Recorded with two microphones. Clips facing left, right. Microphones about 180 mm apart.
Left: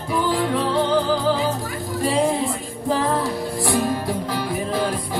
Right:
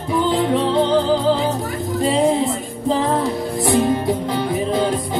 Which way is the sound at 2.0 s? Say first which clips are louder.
Right 3 dB; 20° right (ahead or behind).